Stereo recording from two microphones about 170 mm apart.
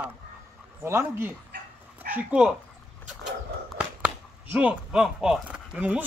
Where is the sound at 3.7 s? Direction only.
5° right (ahead or behind).